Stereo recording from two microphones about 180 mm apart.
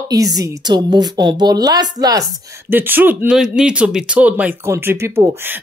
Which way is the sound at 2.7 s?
10° right (ahead or behind).